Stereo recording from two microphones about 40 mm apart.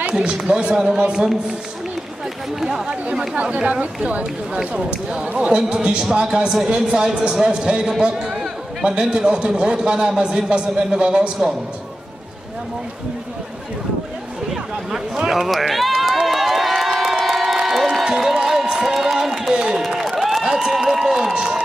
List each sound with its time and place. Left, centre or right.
0.1 s a man's voice: right
2.6 s speech: centre
3.4 s a man's voice: right
4.6 s a man's voice: right
15.2 s speech: centre
16.3 s crowd: centre
18.7 s a sound: centre
19.1 s run: centre
19.5 s run: right